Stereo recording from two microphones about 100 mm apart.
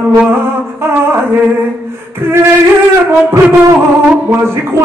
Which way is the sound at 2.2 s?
25° right (ahead or behind).